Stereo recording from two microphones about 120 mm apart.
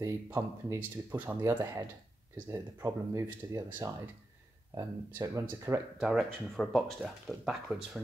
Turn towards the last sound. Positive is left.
turn(degrees=-5)  # may be behind; listen again after turning